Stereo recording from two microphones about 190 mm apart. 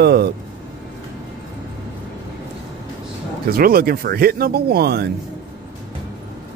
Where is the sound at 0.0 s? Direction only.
60° right (ahead or behind).